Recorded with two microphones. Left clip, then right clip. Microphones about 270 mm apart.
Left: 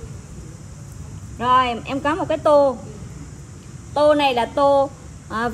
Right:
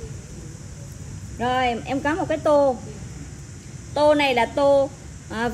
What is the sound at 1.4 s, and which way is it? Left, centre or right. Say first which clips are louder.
Speech: left 5 dB; centre.